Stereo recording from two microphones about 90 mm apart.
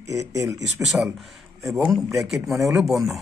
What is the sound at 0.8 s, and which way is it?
Speech, 25° right (ahead or behind).